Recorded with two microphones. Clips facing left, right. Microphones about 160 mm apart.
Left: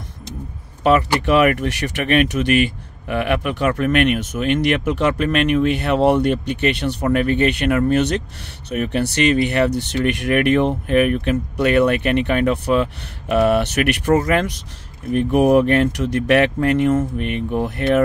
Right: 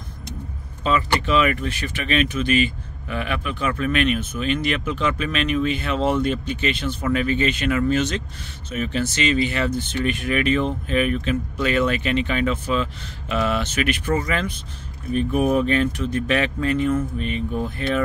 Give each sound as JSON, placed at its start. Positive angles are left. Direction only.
{"t": 0.8, "sound": "speech", "side_deg": 75}